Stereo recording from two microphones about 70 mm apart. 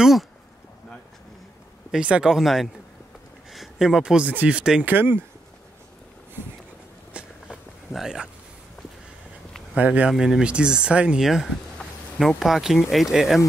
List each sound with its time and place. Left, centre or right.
0.0 s a sound: centre
1.9 s speech: centre
4.8 s speech: right
7.2 s walk: centre
7.9 s speech: centre
9.8 s speech: centre
10.1 s speech: centre
11.8 s a sound: centre
12.4 s speech: centre